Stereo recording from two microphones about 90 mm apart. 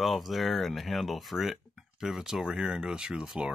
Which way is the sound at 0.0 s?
Centre (ahead or behind).